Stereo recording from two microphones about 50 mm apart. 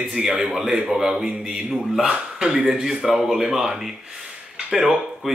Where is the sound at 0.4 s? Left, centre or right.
Centre.